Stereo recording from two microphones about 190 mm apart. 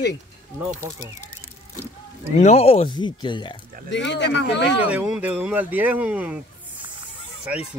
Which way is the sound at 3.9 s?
70° left (ahead or behind).